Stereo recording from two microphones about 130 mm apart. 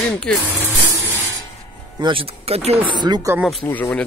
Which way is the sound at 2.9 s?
35° right (ahead or behind).